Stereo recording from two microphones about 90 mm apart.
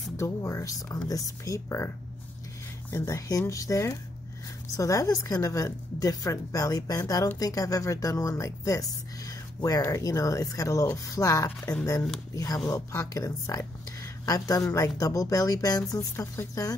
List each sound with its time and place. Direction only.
0.2 s speech: 35° left (ahead or behind)
2.9 s speech: 35° left (ahead or behind)